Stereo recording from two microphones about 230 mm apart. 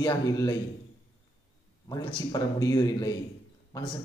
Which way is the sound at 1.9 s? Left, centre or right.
Centre.